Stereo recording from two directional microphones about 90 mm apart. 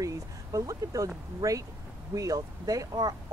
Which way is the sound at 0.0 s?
40° right (ahead or behind).